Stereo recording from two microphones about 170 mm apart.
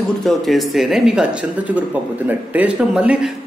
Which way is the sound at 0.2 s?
Centre (ahead or behind).